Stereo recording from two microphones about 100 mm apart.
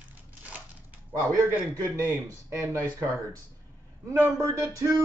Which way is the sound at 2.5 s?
30° right (ahead or behind).